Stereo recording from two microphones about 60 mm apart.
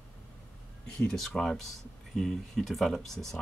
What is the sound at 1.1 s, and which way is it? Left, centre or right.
Speech, centre.